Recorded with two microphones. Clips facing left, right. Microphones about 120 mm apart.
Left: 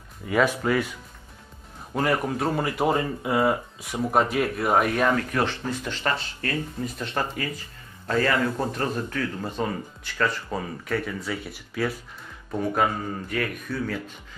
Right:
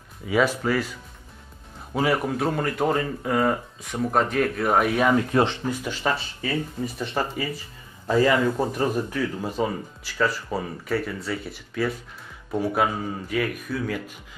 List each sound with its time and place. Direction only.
0.2 s speech: centre (ahead or behind)
2.0 s speech: centre (ahead or behind)
5.1 s speech: 20° right (ahead or behind)
5.9 s speech: 10° right (ahead or behind)